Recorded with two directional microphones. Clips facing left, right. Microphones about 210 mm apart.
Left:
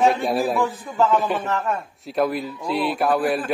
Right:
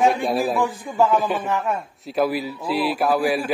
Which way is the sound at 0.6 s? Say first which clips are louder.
Right 1 dB; 15° right (ahead or behind).